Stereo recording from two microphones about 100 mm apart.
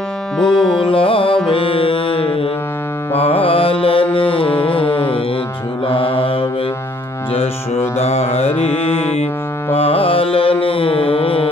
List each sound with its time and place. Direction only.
0.4 s music: 5° left (ahead or behind)
0.7 s music: 60° left (ahead or behind)
5.9 s mantra: 65° left (ahead or behind)
8.0 s music: 90° left
9.8 s carnatic music: 70° left (ahead or behind)
10.6 s music: 65° left (ahead or behind)